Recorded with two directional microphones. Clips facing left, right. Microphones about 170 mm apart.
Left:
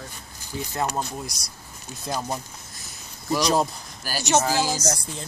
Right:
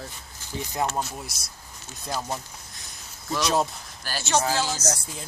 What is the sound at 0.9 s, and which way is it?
Speech, 5° right (ahead or behind).